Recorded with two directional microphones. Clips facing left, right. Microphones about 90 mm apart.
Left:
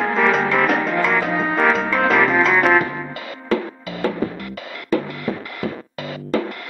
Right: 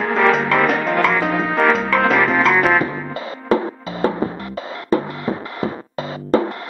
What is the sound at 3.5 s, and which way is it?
Music, 30° right (ahead or behind).